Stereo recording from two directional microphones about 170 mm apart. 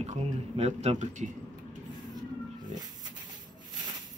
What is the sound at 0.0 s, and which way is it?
Speech, 40° right (ahead or behind).